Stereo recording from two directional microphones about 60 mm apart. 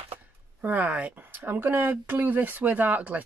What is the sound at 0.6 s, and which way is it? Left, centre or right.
Speech, right.